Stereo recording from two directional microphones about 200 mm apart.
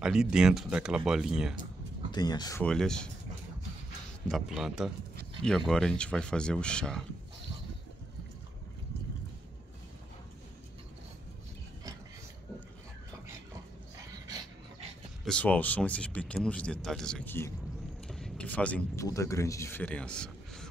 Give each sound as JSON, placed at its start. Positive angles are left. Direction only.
{"t": 0.0, "sound": "speech", "side_deg": -5}
{"t": 2.1, "sound": "speech", "side_deg": 20}
{"t": 2.6, "sound": "speech", "side_deg": 5}
{"t": 4.3, "sound": "speech", "side_deg": -5}
{"t": 15.2, "sound": "speech", "side_deg": 5}
{"t": 18.0, "sound": "a sound", "side_deg": 0}
{"t": 19.0, "sound": "speech", "side_deg": 15}